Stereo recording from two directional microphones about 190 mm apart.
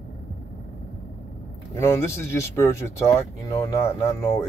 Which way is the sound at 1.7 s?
15° left (ahead or behind).